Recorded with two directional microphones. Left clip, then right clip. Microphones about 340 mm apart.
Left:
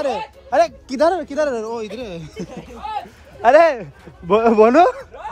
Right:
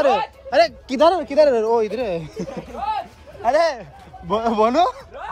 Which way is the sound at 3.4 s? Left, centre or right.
Left.